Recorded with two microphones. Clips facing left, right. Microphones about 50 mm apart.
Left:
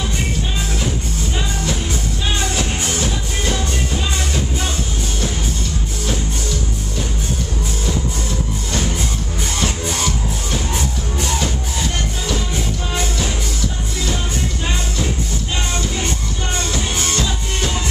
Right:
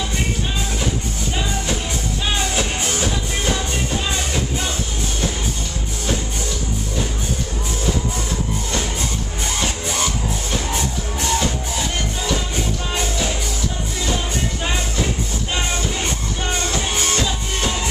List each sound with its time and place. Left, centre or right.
2.5 s music: centre
8.7 s music: centre
16.7 s music: centre